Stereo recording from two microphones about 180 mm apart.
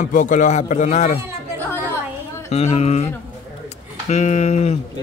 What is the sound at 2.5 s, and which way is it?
Speech, 35° left (ahead or behind).